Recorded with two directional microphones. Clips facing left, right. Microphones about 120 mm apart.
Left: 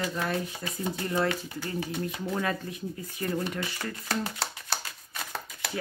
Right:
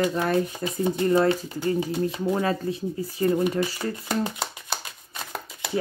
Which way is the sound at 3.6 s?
15° right (ahead or behind).